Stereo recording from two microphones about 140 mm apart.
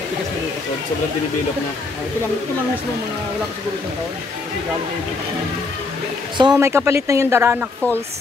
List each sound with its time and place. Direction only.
6.3 s a woman's voice: 35° right (ahead or behind)
6.6 s speech: 20° right (ahead or behind)